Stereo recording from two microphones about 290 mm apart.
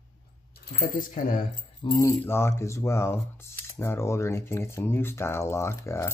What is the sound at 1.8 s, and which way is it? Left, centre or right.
Speech, centre.